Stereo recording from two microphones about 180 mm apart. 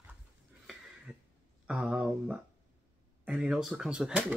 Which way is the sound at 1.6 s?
5° right (ahead or behind).